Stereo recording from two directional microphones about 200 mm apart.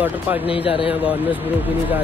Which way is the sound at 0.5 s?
25° left (ahead or behind).